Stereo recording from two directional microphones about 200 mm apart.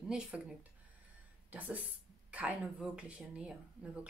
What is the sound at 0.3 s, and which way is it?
Speech, 5° right (ahead or behind).